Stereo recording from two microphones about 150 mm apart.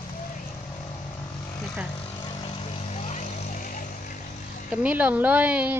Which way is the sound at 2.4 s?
45° left (ahead or behind).